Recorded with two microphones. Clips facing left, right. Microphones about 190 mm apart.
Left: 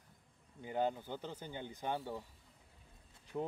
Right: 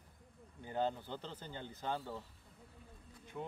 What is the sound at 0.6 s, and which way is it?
Speech, 15° left (ahead or behind).